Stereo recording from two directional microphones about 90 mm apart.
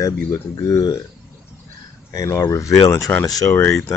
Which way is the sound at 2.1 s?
35° left (ahead or behind).